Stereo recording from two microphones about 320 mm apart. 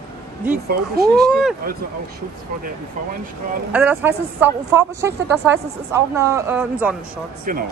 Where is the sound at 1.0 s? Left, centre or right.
Centre.